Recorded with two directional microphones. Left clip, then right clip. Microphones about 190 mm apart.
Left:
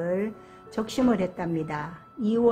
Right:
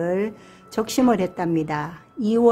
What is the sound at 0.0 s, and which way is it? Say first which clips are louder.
Speech: right 4 dB; 30° right (ahead or behind).